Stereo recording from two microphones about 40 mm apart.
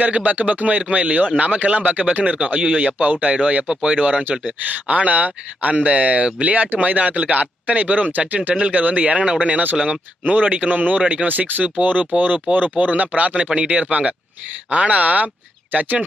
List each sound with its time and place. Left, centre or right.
0.0 s a man's voice: right
11.2 s a man's voice: right